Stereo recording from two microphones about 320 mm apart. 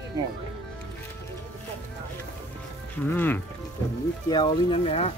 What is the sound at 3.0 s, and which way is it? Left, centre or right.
Speech, centre.